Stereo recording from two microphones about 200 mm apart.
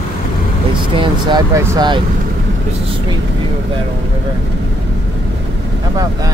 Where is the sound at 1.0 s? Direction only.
20° right (ahead or behind).